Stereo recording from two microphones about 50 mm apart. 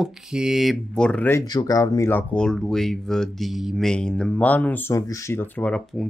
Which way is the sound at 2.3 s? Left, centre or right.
Centre.